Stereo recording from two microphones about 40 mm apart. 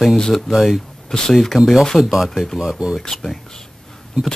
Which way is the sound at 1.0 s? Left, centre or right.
Centre.